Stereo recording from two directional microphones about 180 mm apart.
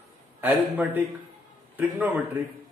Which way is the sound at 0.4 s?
10° right (ahead or behind).